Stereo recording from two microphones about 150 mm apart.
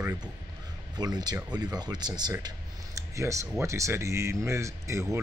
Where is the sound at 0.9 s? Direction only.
25° right (ahead or behind).